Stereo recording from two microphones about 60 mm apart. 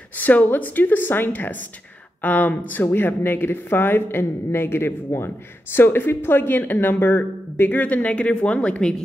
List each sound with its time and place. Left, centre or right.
0.2 s speech: left; by 9.0 s centre